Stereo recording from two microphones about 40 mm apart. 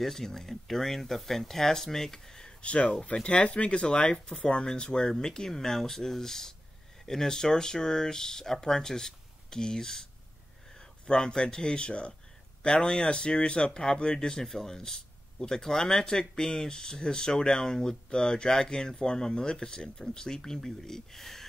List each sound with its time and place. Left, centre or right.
0.0 s speech: centre
2.6 s speech: left; by 21.5 s centre